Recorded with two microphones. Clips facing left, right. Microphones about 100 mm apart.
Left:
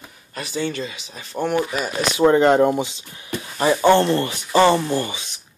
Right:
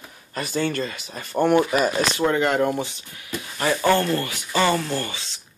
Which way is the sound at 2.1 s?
30° left (ahead or behind).